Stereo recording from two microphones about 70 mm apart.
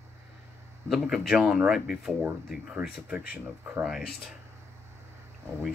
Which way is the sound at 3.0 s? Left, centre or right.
Centre.